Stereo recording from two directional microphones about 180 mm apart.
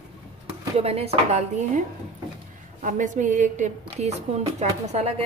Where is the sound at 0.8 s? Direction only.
35° right (ahead or behind).